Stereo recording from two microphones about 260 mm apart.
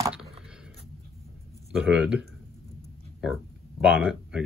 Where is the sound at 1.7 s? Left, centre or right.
Centre.